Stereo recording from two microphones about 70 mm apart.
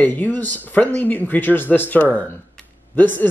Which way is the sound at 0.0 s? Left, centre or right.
Left.